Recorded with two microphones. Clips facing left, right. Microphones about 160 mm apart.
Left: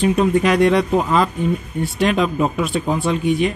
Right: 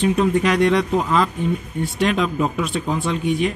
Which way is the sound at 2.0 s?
5° left (ahead or behind).